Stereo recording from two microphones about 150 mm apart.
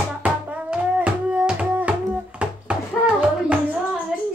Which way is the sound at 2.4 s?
5° right (ahead or behind).